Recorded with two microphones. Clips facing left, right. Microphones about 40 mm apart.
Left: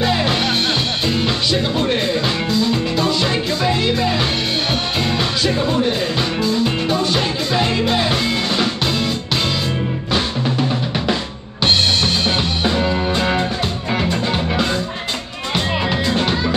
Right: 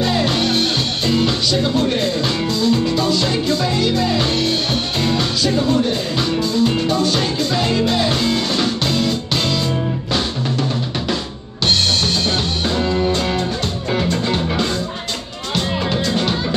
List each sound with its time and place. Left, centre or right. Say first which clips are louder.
0.0 s music: even; centre
5.4 s music: right 1 dB; centre
12.3 s music: left 1 dB; centre